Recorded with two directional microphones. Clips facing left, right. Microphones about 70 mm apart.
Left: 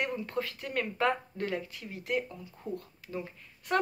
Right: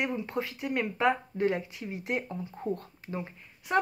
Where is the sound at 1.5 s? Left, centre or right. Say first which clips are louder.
Right 6 dB; right.